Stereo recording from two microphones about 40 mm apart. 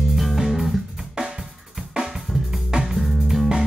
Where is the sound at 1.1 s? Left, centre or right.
Centre.